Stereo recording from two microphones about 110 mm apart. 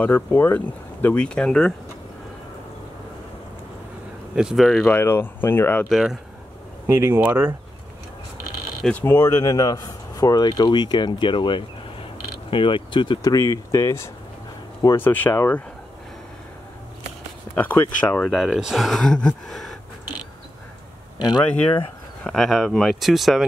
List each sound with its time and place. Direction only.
0.0 s speech: 15° left (ahead or behind)
4.4 s speech: 5° right (ahead or behind)
4.8 s speech: 20° left (ahead or behind)
5.9 s speech: centre (ahead or behind)
6.9 s speech: 20° right (ahead or behind)
9.0 s speech: 25° left (ahead or behind)
17.6 s speech: 15° left (ahead or behind)
21.2 s speech: 40° left (ahead or behind)
22.2 s speech: centre (ahead or behind)